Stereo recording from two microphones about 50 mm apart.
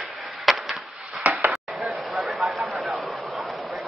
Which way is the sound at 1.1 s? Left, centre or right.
Right.